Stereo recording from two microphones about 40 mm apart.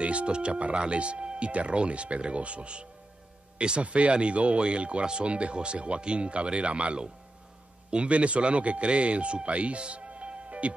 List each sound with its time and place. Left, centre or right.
0.0 s speech: right